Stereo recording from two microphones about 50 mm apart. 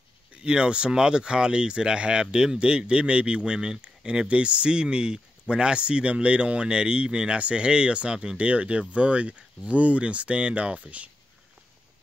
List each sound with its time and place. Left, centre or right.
0.4 s speech: centre